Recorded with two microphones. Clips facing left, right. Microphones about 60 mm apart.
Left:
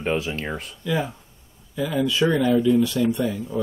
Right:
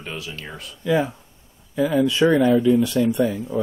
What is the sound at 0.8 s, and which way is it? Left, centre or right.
Speech, centre.